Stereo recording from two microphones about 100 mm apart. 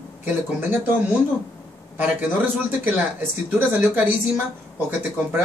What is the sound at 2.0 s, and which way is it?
Speech, 20° right (ahead or behind).